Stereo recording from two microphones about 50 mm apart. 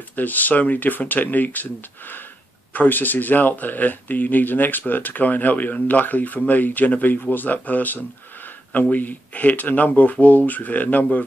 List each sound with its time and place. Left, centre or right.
0.1 s speech: left